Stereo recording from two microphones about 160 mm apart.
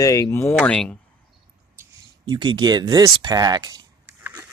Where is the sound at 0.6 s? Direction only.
5° left (ahead or behind).